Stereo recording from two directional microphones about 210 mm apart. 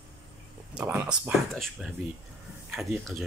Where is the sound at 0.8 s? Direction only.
5° right (ahead or behind).